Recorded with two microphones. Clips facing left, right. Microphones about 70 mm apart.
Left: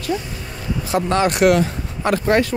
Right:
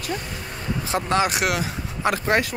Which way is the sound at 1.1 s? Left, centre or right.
Centre.